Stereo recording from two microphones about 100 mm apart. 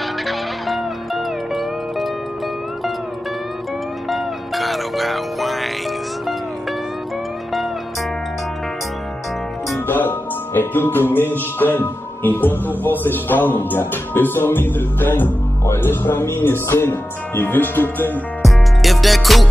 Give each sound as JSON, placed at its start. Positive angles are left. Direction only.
{"t": 0.3, "sound": "music", "side_deg": 0}
{"t": 4.1, "sound": "music", "side_deg": 0}
{"t": 9.8, "sound": "music", "side_deg": 20}
{"t": 13.0, "sound": "a man's voice", "side_deg": 20}
{"t": 18.4, "sound": "music", "side_deg": 0}